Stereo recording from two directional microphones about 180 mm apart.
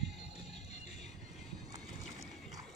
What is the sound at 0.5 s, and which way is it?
Music, 35° left (ahead or behind).